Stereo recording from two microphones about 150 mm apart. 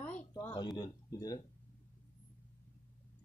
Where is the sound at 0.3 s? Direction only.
15° left (ahead or behind).